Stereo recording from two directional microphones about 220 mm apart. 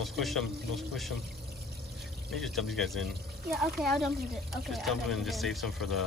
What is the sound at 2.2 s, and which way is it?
Speech, centre (ahead or behind).